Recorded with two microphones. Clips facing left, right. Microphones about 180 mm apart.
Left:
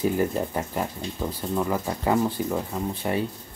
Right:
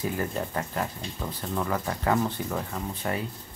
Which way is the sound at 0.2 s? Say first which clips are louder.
Left 5 dB; 15° left (ahead or behind).